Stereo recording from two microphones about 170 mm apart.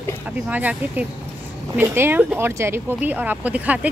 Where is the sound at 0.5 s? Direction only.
10° right (ahead or behind).